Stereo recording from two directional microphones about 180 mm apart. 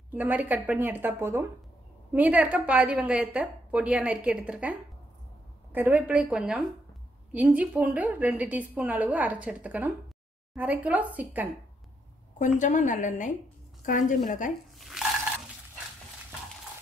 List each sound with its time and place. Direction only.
0.1 s a woman's voice: 10° right (ahead or behind)
12.4 s a woman's voice: 45° left (ahead or behind)
14.8 s a sound: centre (ahead or behind)